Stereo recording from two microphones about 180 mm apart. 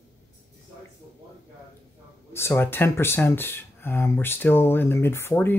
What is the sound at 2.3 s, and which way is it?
Speech, 15° left (ahead or behind).